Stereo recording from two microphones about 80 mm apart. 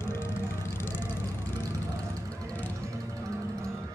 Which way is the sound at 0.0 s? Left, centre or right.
Left.